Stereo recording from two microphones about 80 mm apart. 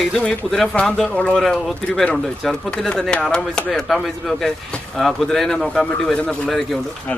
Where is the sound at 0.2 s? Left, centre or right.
Centre.